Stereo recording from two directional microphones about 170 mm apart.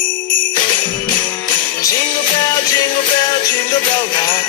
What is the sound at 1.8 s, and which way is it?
Music, 25° left (ahead or behind).